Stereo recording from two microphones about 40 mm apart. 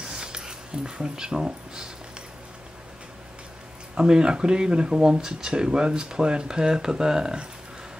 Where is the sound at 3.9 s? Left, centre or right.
Centre.